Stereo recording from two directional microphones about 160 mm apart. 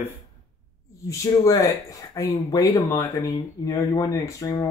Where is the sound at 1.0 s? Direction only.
20° left (ahead or behind).